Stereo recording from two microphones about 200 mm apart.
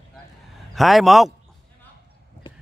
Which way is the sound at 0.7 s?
Centre (ahead or behind).